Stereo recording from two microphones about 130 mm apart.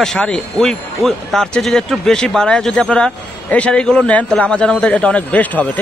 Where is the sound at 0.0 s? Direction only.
5° left (ahead or behind).